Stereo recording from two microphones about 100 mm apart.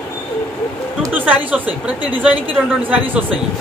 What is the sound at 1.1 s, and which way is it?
Speech, 15° right (ahead or behind).